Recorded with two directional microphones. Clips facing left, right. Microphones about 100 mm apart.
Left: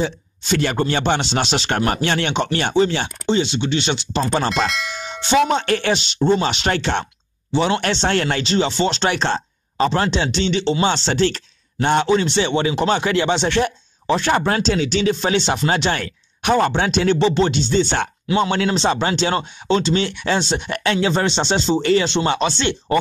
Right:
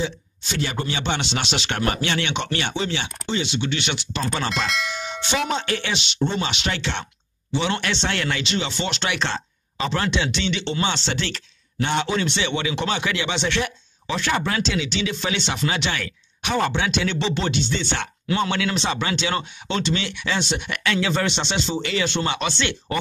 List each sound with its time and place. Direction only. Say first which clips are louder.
0.0 s a man's voice: left 4 dB; 55° left (ahead or behind); by 4.5 s 35° left (ahead or behind)
4.6 s bell: left 1 dB; centre (ahead or behind)
5.5 s a man's voice: left 6 dB; 55° left (ahead or behind)
18.3 s speech: left 4 dB; 25° left (ahead or behind)
22.0 s speech: left 5 dB; 25° left (ahead or behind)